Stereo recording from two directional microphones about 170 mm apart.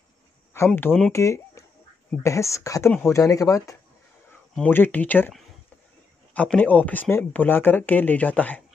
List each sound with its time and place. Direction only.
0.5 s speech: 15° left (ahead or behind)